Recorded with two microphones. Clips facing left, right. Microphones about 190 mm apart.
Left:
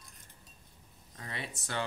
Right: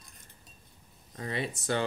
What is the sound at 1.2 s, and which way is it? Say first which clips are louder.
Speech: right 8 dB; 20° right (ahead or behind).